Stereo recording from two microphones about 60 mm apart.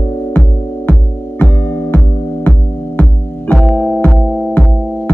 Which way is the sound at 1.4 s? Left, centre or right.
Left.